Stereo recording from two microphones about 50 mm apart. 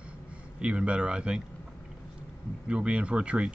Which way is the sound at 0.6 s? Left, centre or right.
Right.